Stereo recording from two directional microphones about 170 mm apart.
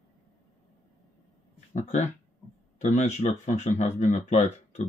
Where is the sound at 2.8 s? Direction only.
45° left (ahead or behind).